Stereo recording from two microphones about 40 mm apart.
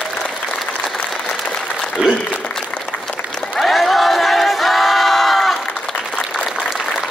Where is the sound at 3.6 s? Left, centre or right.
Centre.